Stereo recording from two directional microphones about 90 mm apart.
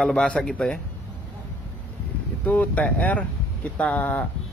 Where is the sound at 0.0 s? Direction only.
5° left (ahead or behind).